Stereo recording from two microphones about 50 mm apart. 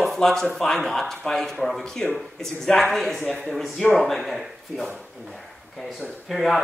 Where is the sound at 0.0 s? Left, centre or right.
Centre.